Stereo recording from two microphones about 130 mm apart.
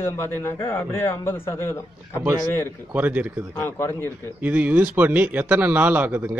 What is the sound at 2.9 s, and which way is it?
Speech, 10° right (ahead or behind).